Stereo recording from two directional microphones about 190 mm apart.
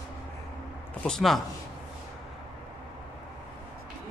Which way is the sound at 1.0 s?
Centre (ahead or behind).